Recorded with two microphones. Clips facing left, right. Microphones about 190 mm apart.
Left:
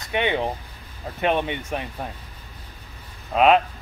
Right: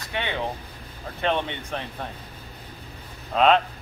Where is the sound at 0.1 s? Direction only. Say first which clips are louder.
Left 6 dB; 15° left (ahead or behind).